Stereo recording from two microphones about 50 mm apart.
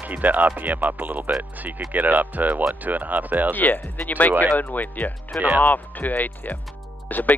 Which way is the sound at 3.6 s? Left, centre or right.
Left.